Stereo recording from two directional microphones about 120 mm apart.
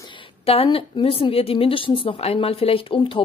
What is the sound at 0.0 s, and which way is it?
A woman's voice, 45° left (ahead or behind).